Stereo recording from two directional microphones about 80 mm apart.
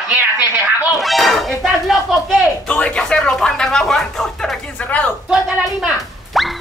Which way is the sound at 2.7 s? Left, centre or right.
Centre.